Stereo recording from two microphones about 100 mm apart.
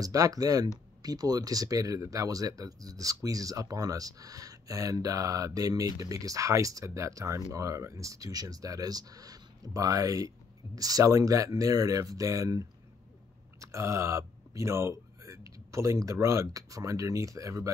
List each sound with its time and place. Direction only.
0.0 s speech: 35° right (ahead or behind)